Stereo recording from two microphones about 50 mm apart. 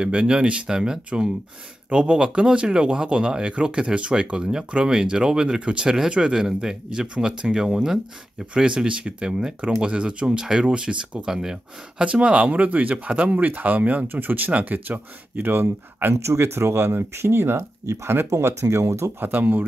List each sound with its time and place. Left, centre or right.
0.0 s speech: right
16.2 s speech: right
17.8 s speech: right
19.1 s speech: right